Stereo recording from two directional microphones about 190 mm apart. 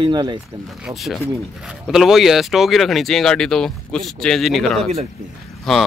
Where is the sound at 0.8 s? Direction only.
Centre (ahead or behind).